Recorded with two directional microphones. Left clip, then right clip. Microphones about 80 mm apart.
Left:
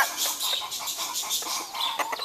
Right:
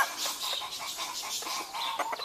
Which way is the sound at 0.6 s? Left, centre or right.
Right.